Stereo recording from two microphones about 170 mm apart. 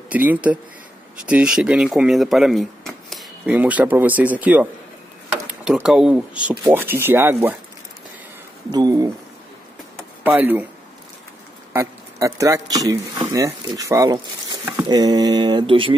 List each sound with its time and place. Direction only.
0.1 s speech: 10° right (ahead or behind)
8.7 s speech: 20° right (ahead or behind)
10.2 s speech: 10° right (ahead or behind)
11.7 s speech: 15° right (ahead or behind); by 15.9 s 30° right (ahead or behind)